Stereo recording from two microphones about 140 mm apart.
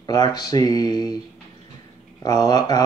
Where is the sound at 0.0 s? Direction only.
30° left (ahead or behind).